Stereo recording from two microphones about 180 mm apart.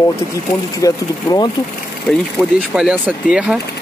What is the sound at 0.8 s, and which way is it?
Speech, 20° left (ahead or behind).